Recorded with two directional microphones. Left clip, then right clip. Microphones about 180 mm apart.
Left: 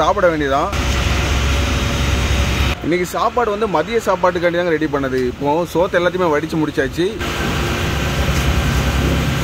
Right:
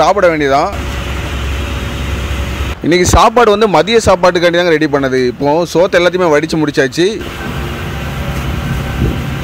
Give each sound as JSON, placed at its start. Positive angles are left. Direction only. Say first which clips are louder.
{"t": 0.0, "sound": "speech", "louder": "right 5 dB", "side_deg": -20}
{"t": 2.9, "sound": "speech", "louder": "right 11 dB", "side_deg": -45}